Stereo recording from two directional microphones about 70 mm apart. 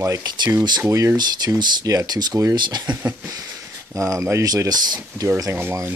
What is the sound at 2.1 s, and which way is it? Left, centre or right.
Speech, right.